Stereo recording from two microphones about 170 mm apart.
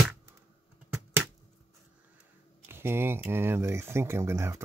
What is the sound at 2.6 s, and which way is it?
Speech, 15° right (ahead or behind).